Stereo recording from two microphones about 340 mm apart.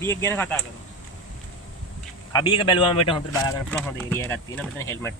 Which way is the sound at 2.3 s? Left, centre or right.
Centre.